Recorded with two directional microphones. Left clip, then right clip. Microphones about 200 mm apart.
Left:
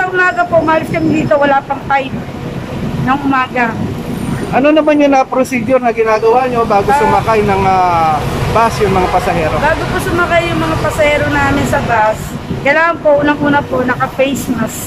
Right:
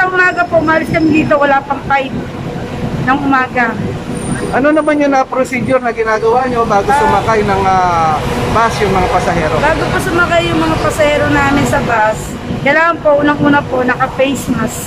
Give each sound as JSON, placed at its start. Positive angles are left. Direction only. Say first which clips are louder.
{"t": 0.2, "sound": "speech", "louder": "even", "side_deg": 0}
{"t": 3.1, "sound": "a man's voice", "louder": "right 1 dB", "side_deg": 5}
{"t": 11.0, "sound": "speech", "louder": "even", "side_deg": 0}